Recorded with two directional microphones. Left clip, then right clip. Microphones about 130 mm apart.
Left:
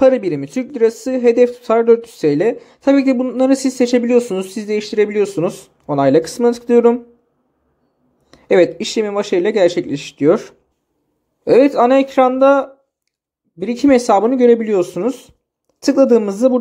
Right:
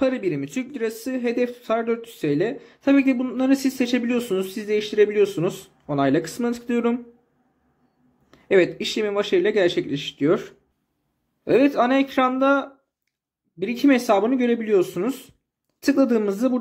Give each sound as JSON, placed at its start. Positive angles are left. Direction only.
{"t": 0.0, "sound": "speech", "side_deg": 40}
{"t": 8.3, "sound": "speech", "side_deg": 35}